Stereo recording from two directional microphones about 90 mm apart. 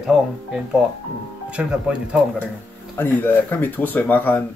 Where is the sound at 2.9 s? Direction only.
25° left (ahead or behind).